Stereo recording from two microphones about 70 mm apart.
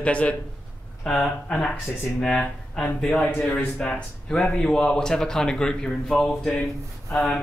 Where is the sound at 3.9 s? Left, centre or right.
Centre.